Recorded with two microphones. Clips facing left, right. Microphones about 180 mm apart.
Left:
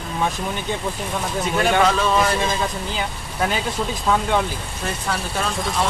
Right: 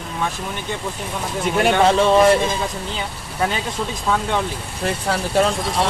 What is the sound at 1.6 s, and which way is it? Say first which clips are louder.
Speech: right 3 dB; 25° right (ahead or behind).